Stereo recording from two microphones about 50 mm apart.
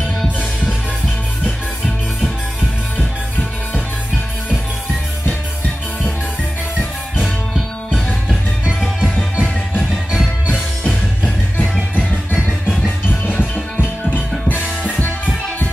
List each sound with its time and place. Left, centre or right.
7.2 s music: centre
9.1 s music: left
13.1 s music: left